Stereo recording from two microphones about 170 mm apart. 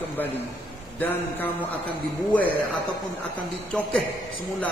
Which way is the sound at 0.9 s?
10° left (ahead or behind).